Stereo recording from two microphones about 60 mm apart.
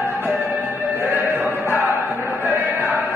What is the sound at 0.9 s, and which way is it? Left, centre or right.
Music, right.